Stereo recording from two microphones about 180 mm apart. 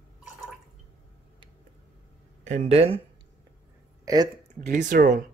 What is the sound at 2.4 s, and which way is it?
Speech, 35° right (ahead or behind).